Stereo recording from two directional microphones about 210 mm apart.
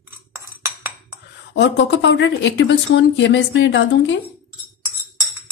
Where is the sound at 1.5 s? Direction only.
55° left (ahead or behind).